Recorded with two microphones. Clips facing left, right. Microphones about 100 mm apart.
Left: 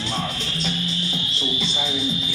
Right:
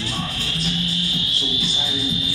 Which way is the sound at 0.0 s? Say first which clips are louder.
Left 1 dB; 30° left (ahead or behind).